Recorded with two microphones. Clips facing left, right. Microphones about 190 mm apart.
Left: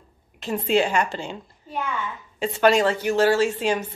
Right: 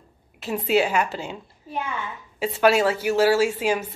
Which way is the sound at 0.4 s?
5° right (ahead or behind).